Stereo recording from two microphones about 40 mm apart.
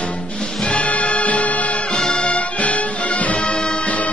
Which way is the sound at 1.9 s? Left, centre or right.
Left.